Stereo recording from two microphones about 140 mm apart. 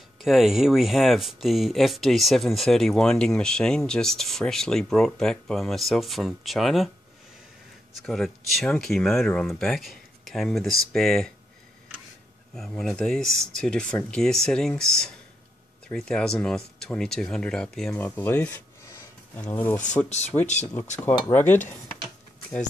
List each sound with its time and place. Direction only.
0.2 s speech: centre (ahead or behind)
8.1 s speech: centre (ahead or behind)
12.5 s speech: centre (ahead or behind)
18.9 s a sound: 20° left (ahead or behind)
19.4 s speech: 15° left (ahead or behind)
20.1 s speech: 55° left (ahead or behind)
21.3 s speech: 15° left (ahead or behind)